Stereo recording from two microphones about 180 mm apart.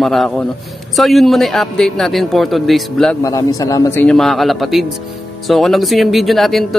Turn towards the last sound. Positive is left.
turn(degrees=0)  # may be behind; listen again after turning